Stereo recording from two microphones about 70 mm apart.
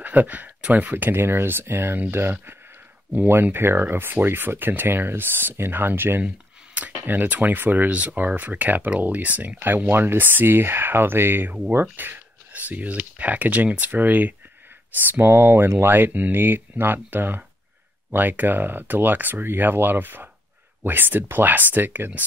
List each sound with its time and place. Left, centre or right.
0.0 s speech: right
6.2 s a sound: right
7.1 s speech: right